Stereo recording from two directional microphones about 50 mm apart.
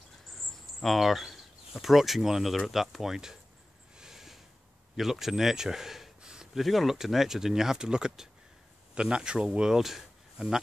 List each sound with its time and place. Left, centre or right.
0.3 s cricket: centre
0.7 s speech: centre
4.0 s a sound: centre
4.9 s speech: centre
6.6 s speech: centre
9.8 s a sound: centre